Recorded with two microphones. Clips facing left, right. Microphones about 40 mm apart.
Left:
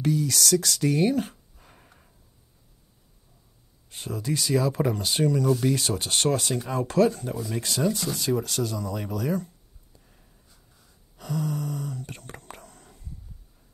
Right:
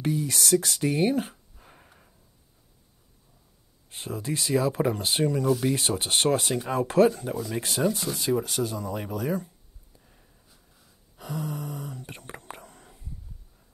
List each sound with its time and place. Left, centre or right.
0.0 s speech: right
1.6 s gasp: centre
3.9 s speech: right
5.5 s speech: centre
5.8 s speech: right
7.1 s speech: centre
9.9 s gasp: centre
11.1 s whispering: right